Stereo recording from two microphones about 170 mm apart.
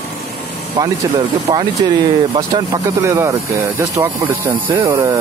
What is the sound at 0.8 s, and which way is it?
Speech, 25° right (ahead or behind).